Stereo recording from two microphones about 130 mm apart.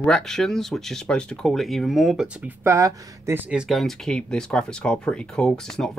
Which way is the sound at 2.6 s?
20° right (ahead or behind).